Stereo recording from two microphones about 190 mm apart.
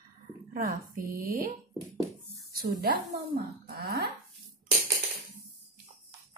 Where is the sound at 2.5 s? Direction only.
55° right (ahead or behind).